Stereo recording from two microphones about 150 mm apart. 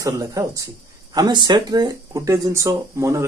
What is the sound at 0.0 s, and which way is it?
Speech, 25° right (ahead or behind).